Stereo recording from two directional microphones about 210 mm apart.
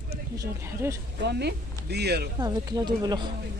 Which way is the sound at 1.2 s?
50° right (ahead or behind).